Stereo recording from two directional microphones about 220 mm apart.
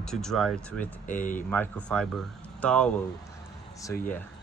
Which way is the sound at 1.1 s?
35° left (ahead or behind).